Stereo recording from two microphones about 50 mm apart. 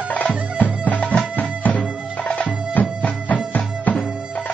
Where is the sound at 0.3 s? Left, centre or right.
Right.